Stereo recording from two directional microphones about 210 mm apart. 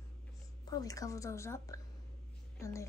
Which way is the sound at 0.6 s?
15° left (ahead or behind).